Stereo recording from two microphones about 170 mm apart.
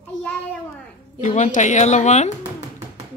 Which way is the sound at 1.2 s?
45° left (ahead or behind).